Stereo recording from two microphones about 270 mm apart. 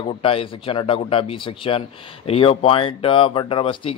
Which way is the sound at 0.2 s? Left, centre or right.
Centre.